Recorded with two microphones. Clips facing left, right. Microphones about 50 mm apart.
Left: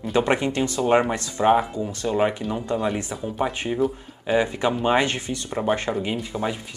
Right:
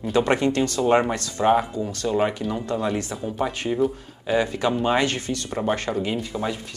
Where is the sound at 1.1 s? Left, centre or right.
Left.